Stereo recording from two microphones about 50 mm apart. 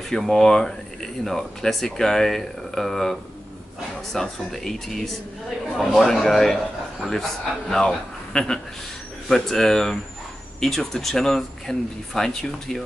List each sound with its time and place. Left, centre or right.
0.1 s speech: centre
5.7 s a man's voice: centre
5.9 s a man's voice: centre